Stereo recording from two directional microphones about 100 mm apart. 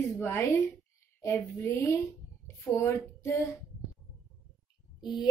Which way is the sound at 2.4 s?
30° left (ahead or behind).